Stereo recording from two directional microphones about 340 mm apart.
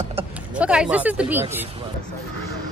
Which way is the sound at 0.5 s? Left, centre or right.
Centre.